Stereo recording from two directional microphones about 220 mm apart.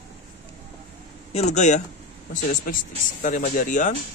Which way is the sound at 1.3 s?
30° left (ahead or behind).